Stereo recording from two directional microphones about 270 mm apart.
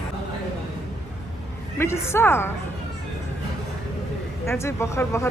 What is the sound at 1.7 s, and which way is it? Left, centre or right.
Speech, centre.